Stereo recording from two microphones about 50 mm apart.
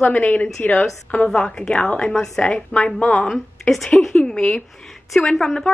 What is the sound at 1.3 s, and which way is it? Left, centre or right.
A woman's voice, centre.